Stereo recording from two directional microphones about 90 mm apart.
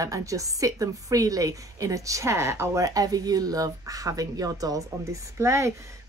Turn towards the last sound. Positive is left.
turn(degrees=-35)  # may be behind; listen again after turning